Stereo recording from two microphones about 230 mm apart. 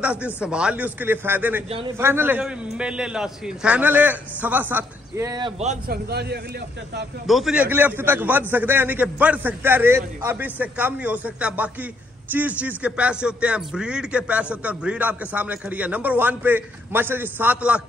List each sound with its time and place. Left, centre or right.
0.0 s a man's voice: centre
5.6 s a man's voice: right
7.2 s a man's voice: centre